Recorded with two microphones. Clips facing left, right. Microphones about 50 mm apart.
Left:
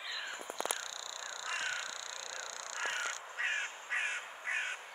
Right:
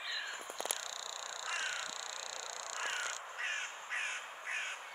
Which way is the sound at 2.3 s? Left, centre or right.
Left.